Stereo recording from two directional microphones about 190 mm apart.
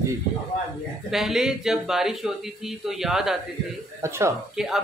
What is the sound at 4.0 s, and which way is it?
Speech, 15° right (ahead or behind).